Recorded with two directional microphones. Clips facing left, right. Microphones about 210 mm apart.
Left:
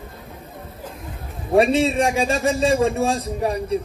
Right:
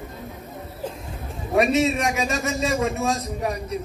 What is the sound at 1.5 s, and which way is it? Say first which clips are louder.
A man's voice: left 3 dB; 30° left (ahead or behind).